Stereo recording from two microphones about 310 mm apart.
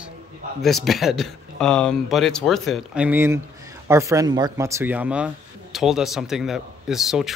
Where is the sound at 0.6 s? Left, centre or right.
Centre.